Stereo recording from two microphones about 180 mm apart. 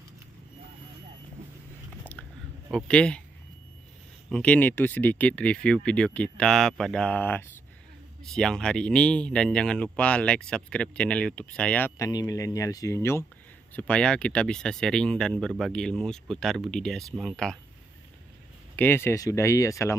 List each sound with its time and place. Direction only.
2.7 s speech: 5° left (ahead or behind)
4.3 s speech: 5° left (ahead or behind)
12.1 s speech: 20° left (ahead or behind); by 17.6 s centre (ahead or behind)
18.8 s speech: 10° left (ahead or behind)